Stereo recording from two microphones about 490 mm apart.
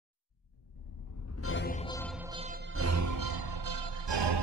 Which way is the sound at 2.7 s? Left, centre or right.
Right.